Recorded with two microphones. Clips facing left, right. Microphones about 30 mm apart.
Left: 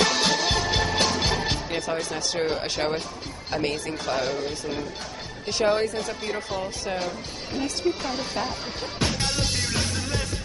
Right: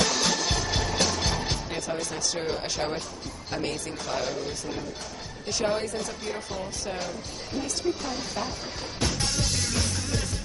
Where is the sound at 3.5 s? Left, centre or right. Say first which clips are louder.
Left 4 dB; left.